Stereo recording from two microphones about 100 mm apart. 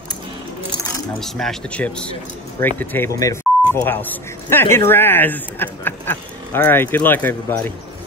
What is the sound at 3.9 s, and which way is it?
Speech, 20° left (ahead or behind).